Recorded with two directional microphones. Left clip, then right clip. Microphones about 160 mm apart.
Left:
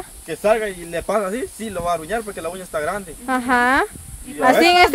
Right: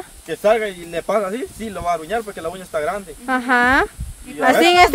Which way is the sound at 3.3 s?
10° right (ahead or behind).